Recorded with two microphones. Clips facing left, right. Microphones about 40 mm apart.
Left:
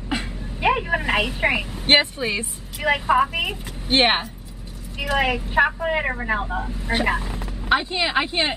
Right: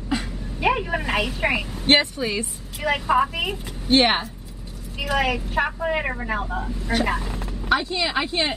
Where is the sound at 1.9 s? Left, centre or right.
Left.